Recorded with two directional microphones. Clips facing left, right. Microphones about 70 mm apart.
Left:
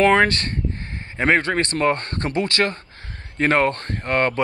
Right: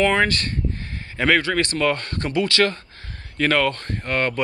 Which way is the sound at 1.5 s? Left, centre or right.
Left.